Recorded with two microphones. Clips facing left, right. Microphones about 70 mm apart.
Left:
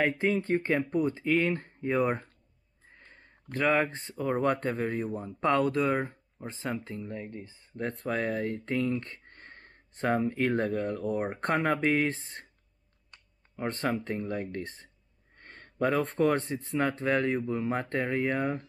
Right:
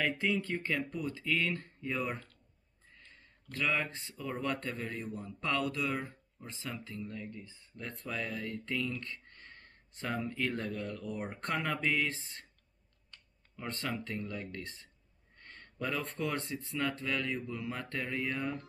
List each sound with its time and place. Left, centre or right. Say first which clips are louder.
0.2 s speech: left 6 dB; left
13.6 s speech: left 8 dB; left